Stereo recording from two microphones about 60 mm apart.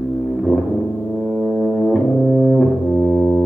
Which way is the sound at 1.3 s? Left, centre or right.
Centre.